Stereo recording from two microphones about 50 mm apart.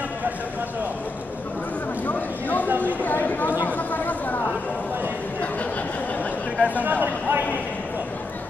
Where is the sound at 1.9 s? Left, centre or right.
Left.